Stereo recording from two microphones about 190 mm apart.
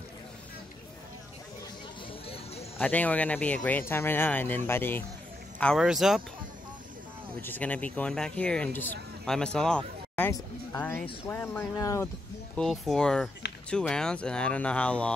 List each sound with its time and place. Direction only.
2.2 s a sound: 30° left (ahead or behind)
2.8 s speech: 10° left (ahead or behind)
7.4 s speech: 10° left (ahead or behind)
12.5 s speech: centre (ahead or behind)